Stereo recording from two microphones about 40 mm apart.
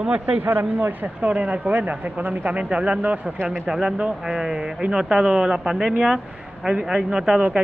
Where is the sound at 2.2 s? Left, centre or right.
Right.